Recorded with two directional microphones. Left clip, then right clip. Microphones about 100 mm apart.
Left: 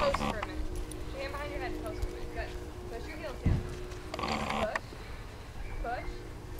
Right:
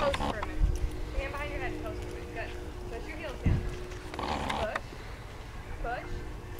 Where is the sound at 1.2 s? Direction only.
10° left (ahead or behind).